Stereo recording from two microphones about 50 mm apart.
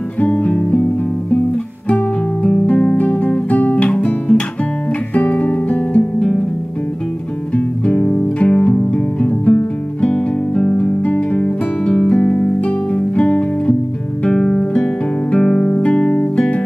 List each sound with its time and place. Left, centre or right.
0.2 s music: left
1.9 s music: left
7.5 s music: left
14.2 s music: centre